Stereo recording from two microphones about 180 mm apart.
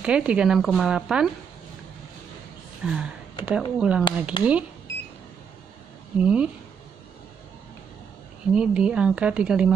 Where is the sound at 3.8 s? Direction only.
5° right (ahead or behind).